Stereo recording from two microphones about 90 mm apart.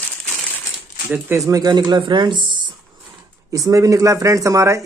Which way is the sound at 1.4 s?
45° right (ahead or behind).